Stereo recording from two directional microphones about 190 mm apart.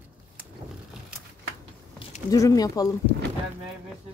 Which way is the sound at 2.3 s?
20° left (ahead or behind).